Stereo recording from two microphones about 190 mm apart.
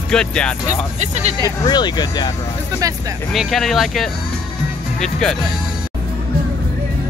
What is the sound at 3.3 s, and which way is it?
Speech, centre (ahead or behind).